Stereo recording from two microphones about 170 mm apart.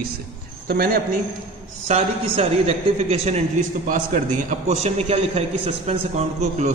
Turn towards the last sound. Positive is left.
turn(degrees=-45)  # may be behind; listen again after turning